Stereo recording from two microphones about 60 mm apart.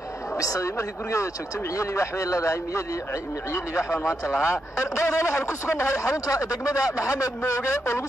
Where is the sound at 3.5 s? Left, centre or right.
Left.